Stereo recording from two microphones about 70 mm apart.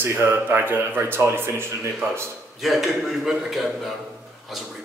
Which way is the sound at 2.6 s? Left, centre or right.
Centre.